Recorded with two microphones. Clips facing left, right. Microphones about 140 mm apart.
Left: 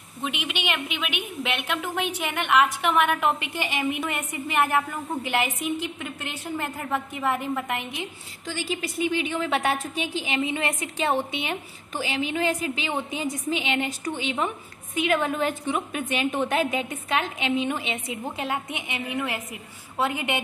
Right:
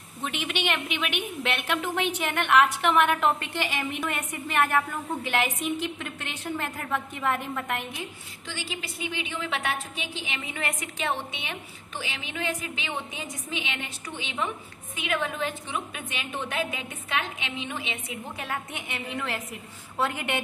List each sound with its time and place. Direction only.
0.2 s a woman's voice: 10° left (ahead or behind)
8.5 s a woman's voice: 40° left (ahead or behind)
18.4 s a woman's voice: 20° left (ahead or behind)